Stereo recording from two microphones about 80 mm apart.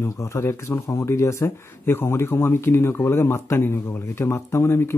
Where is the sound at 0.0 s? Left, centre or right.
Left.